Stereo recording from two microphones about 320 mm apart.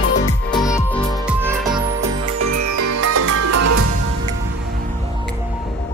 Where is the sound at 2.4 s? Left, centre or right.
Right.